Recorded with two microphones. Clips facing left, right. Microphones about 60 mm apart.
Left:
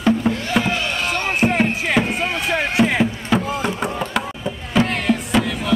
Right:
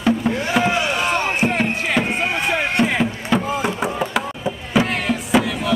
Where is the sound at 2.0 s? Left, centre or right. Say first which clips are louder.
Right 1 dB; centre.